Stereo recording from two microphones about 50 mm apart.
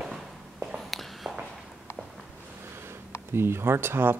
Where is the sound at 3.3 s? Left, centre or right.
Right.